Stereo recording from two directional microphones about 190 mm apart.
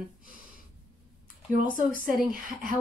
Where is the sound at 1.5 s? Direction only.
45° right (ahead or behind).